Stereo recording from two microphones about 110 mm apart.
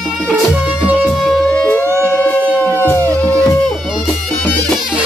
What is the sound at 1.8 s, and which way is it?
Music, 25° right (ahead or behind).